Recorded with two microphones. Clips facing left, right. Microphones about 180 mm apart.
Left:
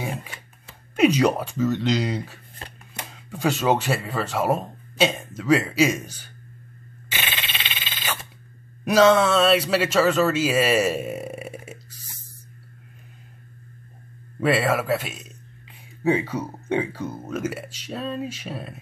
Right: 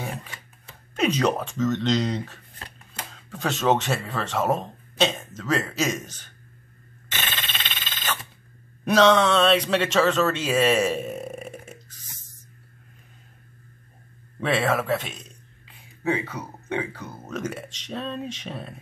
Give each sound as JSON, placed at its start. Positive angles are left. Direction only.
{"t": 0.9, "sound": "a man's voice", "side_deg": 10}
{"t": 7.1, "sound": "telephone bell ringing", "side_deg": 10}
{"t": 8.8, "sound": "a man's voice", "side_deg": 5}
{"t": 14.4, "sound": "speech", "side_deg": 5}
{"t": 16.0, "sound": "speech", "side_deg": 30}
{"t": 17.3, "sound": "a man's voice", "side_deg": 5}